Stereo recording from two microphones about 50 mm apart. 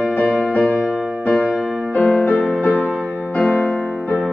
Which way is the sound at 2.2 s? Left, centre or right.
Left.